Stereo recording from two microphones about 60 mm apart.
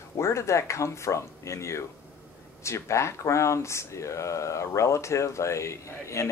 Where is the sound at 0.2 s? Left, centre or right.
Left.